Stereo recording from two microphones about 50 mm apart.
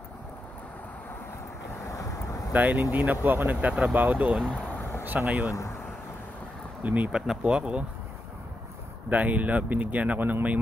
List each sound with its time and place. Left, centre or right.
1.9 s boat: left
2.5 s speech: right
5.5 s speech: left
6.8 s speech: right
7.1 s speech: centre
9.1 s speech: right